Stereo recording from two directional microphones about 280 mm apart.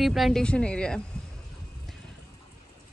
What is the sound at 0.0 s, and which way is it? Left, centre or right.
Speech, centre.